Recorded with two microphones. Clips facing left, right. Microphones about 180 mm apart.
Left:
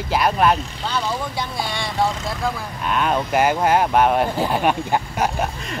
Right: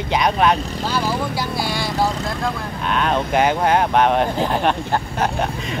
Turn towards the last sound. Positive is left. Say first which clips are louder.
# right 1 dB
turn(degrees=10)  # may be behind; listen again after turning